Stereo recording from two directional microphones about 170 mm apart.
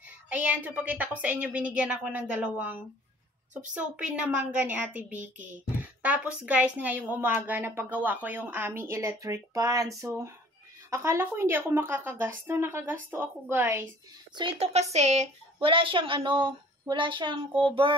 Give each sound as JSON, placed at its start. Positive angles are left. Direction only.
{"t": 0.3, "sound": "a child's voice", "side_deg": -10}
{"t": 14.3, "sound": "a woman's voice", "side_deg": -35}